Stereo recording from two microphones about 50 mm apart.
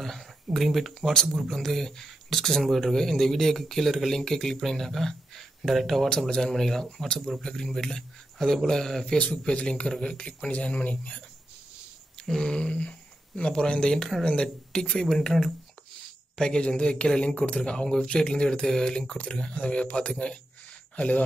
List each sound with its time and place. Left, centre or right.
0.0 s speech: centre
6.0 s speech: centre
12.3 s speech: centre